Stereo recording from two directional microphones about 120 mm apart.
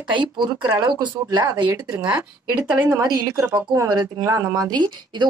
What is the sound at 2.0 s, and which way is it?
Speech, 20° right (ahead or behind).